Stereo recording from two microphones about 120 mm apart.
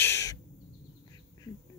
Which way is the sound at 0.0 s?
25° left (ahead or behind).